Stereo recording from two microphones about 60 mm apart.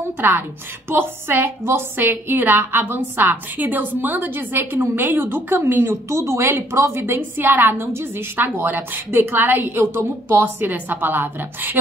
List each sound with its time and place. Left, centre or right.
0.2 s a woman's voice: right